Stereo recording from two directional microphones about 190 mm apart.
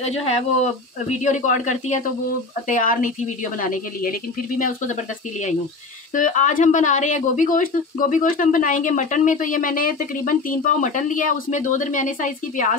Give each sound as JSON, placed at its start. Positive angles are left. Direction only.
{"t": 0.0, "sound": "speech", "side_deg": 35}
{"t": 6.1, "sound": "speech", "side_deg": 45}